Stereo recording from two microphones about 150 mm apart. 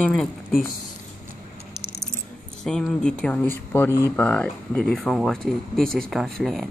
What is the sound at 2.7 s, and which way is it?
Speech, 5° left (ahead or behind).